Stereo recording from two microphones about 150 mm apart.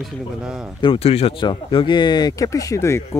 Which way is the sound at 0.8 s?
40° left (ahead or behind).